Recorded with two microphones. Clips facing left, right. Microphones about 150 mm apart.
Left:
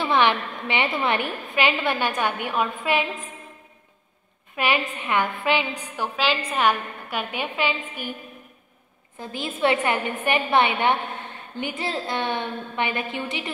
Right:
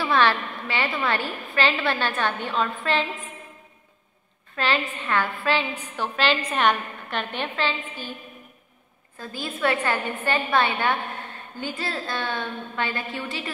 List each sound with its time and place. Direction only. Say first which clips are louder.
0.0 s a woman's voice: left 1 dB; 15° left (ahead or behind)
4.6 s a woman's voice: left 1 dB; 15° left (ahead or behind)
9.2 s a woman's voice: left 2 dB; 20° left (ahead or behind)